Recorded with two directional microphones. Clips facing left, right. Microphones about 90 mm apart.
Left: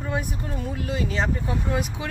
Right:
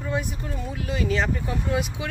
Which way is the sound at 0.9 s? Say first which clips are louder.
Right 2 dB; 30° left (ahead or behind).